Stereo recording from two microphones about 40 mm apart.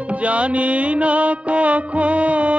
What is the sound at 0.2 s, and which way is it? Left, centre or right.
Music, right.